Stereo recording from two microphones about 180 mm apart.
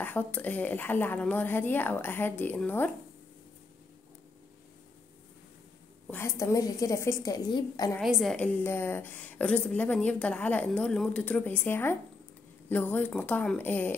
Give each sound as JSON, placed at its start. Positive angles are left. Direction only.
{"t": 0.0, "sound": "a woman's voice", "side_deg": 10}
{"t": 6.0, "sound": "a woman's voice", "side_deg": 15}
{"t": 8.0, "sound": "a woman's voice", "side_deg": 0}